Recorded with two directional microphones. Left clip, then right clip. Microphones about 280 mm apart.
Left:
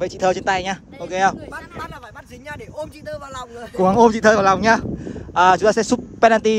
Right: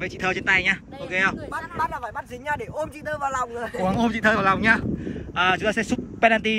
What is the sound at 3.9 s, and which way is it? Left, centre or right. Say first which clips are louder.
Speech: left 9 dB; centre.